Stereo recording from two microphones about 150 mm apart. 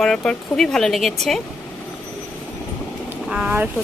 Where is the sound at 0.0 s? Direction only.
5° left (ahead or behind).